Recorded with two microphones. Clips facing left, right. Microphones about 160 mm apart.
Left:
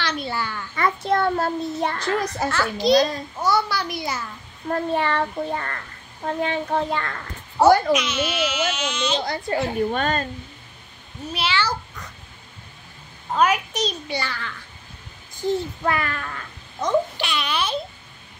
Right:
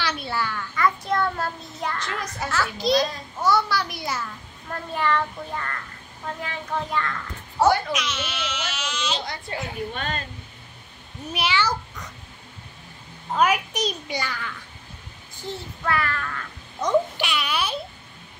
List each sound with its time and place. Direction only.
0.0 s babbling: 5° right (ahead or behind)
0.7 s a child's voice: 30° left (ahead or behind)
2.5 s speech: centre (ahead or behind)
4.9 s a child's voice: 30° left (ahead or behind)
5.2 s a child's voice: 40° left (ahead or behind)
6.4 s a child's voice: 30° left (ahead or behind)
7.9 s speech: 5° left (ahead or behind)
9.2 s a child's voice: 35° left (ahead or behind)
9.8 s speech: 45° left (ahead or behind)
11.3 s a child's voice: 15° right (ahead or behind)
13.4 s a child's voice: 10° right (ahead or behind)
15.4 s a child's voice: 20° left (ahead or behind)
16.8 s a child's voice: 10° right (ahead or behind)